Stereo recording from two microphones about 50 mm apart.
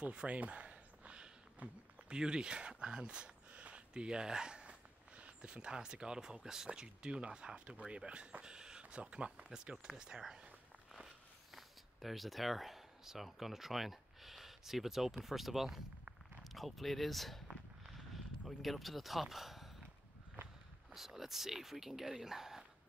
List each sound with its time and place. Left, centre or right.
0.0 s speech: right
11.5 s speech: centre
17.5 s a sound: centre
18.6 s speech: centre
20.9 s speech: centre